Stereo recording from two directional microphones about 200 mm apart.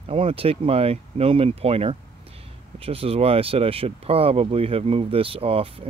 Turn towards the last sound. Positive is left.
turn(degrees=-30)  # may be behind; listen again after turning